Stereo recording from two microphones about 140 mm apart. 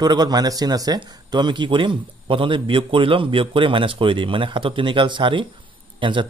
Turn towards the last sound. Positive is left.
turn(degrees=-35)  # may be behind; listen again after turning